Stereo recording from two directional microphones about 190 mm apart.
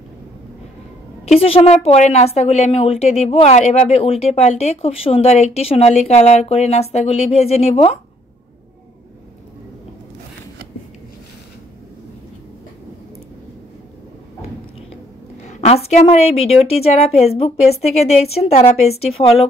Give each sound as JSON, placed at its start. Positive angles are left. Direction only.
{"t": 1.4, "sound": "a woman's voice", "side_deg": 30}
{"t": 15.4, "sound": "a woman's voice", "side_deg": 35}